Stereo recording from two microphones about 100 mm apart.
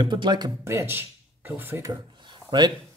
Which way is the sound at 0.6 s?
25° right (ahead or behind).